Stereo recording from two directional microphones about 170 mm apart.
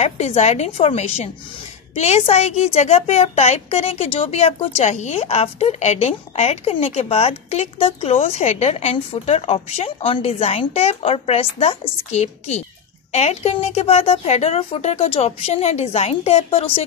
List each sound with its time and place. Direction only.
0.0 s a woman's voice: 40° left (ahead or behind)